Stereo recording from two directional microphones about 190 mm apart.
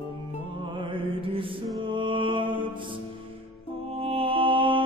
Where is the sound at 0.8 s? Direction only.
25° right (ahead or behind).